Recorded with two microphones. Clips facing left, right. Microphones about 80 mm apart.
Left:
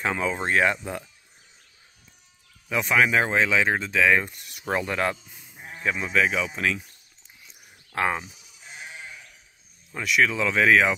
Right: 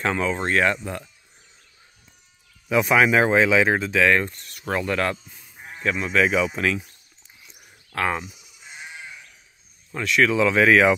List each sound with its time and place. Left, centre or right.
0.0 s speech: centre
2.7 s speech: centre
6.1 s speech: centre
7.9 s speech: centre
9.9 s speech: centre